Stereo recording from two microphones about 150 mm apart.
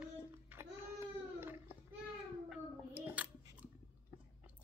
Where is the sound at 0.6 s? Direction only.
15° right (ahead or behind).